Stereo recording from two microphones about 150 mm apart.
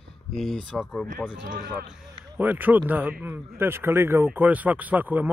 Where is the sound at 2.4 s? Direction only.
10° right (ahead or behind).